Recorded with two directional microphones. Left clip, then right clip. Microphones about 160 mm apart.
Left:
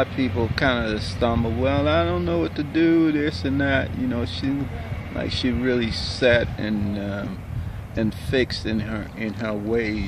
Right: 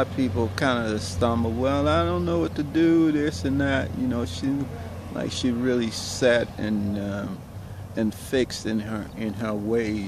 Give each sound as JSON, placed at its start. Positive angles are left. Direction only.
{"t": 0.0, "sound": "speech", "side_deg": -5}